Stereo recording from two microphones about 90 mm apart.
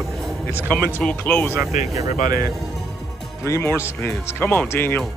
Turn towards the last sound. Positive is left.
turn(degrees=25)  # may be behind; listen again after turning